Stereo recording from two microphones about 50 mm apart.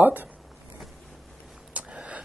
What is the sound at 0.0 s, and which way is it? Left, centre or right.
Speech, right.